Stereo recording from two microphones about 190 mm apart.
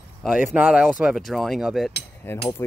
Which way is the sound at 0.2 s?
Centre (ahead or behind).